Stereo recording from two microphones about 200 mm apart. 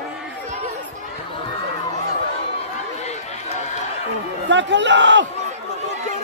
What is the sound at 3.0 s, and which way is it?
Run, 35° left (ahead or behind).